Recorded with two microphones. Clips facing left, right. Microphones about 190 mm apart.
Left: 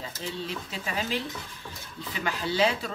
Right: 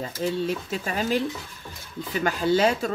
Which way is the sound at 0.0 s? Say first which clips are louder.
Right 9 dB; 50° right (ahead or behind).